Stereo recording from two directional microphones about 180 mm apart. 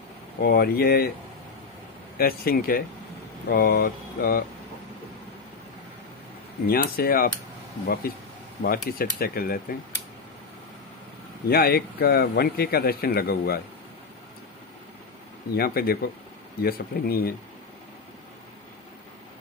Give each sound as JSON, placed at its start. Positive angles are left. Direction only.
{"t": 0.4, "sound": "a man's voice", "side_deg": 55}
{"t": 2.1, "sound": "a man's voice", "side_deg": 55}
{"t": 6.7, "sound": "a man's voice", "side_deg": 55}
{"t": 11.4, "sound": "a man's voice", "side_deg": 60}
{"t": 15.5, "sound": "a man's voice", "side_deg": 60}